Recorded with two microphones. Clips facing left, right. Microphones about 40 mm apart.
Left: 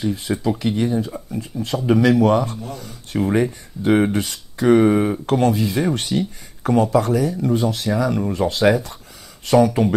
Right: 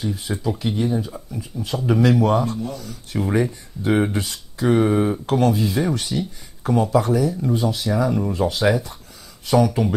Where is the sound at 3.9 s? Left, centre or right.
Left.